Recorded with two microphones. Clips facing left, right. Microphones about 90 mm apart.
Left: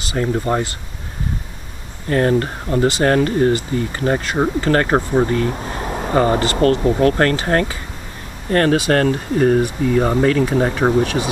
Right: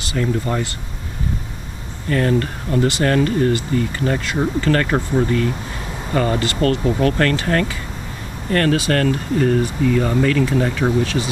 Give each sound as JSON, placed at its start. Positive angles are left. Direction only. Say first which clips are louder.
{"t": 0.2, "sound": "speech", "louder": "left 2 dB", "side_deg": 30}
{"t": 2.0, "sound": "speech", "louder": "left 2 dB", "side_deg": 35}